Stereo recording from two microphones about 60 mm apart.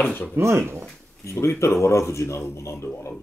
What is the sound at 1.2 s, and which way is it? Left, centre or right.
Speech, left.